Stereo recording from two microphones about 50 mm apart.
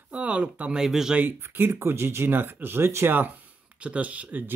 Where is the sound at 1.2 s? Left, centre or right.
Right.